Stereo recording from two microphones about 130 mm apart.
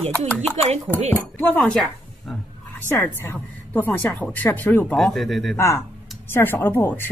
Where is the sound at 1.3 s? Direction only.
15° left (ahead or behind).